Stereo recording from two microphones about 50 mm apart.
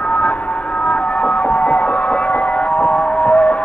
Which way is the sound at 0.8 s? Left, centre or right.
Left.